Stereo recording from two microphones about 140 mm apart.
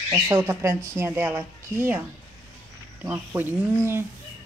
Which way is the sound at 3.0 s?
15° right (ahead or behind).